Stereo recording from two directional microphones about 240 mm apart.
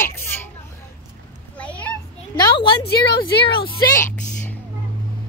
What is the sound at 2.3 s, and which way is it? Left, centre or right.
A woman's voice, centre.